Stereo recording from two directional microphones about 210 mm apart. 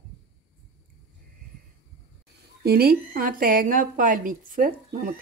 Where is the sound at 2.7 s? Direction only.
45° right (ahead or behind).